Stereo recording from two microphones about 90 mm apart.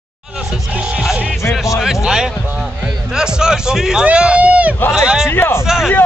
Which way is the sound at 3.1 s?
5° right (ahead or behind).